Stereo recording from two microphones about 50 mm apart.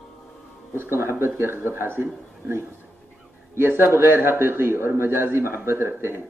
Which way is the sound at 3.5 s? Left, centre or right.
Right.